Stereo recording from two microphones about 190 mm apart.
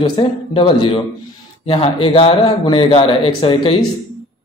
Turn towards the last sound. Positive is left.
turn(degrees=30)  # may be behind; listen again after turning